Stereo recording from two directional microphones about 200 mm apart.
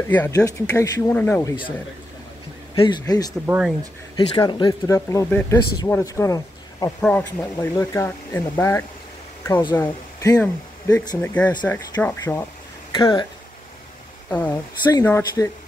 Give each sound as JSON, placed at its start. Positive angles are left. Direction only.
{"t": 0.1, "sound": "speech", "side_deg": 10}
{"t": 2.7, "sound": "a man's voice", "side_deg": 20}
{"t": 3.4, "sound": "speech", "side_deg": -5}
{"t": 4.4, "sound": "speech", "side_deg": 20}
{"t": 7.0, "sound": "a man's voice", "side_deg": 5}
{"t": 14.3, "sound": "speech", "side_deg": 10}
{"t": 14.8, "sound": "a man's voice", "side_deg": 20}